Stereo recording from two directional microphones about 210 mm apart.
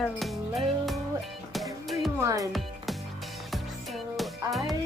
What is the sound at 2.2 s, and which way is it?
Speech, 15° right (ahead or behind).